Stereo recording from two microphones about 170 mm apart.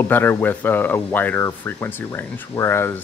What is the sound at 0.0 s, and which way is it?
Speech, 10° left (ahead or behind).